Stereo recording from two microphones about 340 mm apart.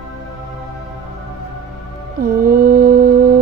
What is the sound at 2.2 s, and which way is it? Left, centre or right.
Mantra, right.